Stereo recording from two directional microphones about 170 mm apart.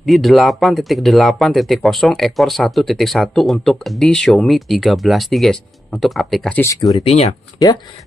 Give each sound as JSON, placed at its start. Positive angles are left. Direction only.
{"t": 0.0, "sound": "speech", "side_deg": 0}
{"t": 6.6, "sound": "speech", "side_deg": 20}
{"t": 7.1, "sound": "speech", "side_deg": 40}